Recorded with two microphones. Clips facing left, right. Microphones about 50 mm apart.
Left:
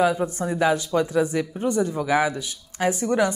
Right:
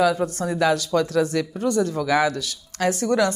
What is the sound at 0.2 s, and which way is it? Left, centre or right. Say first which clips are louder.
Speech: right 1 dB; centre.